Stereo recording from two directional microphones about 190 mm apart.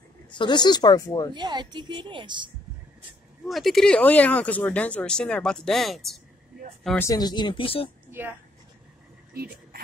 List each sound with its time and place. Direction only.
0.3 s speech: 25° left (ahead or behind)
1.3 s a woman's voice: 25° right (ahead or behind)
3.4 s speech: centre (ahead or behind)
7.0 s speech: 20° left (ahead or behind)
8.1 s speech: 10° right (ahead or behind)
9.3 s a sound: 55° right (ahead or behind)